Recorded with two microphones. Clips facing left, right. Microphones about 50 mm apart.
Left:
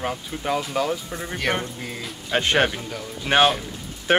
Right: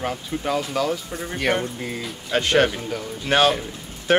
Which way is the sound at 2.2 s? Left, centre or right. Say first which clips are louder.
Right 1 dB; left.